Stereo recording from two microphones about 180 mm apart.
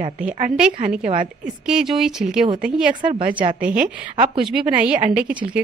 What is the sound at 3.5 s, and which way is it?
A woman's voice, 5° right (ahead or behind).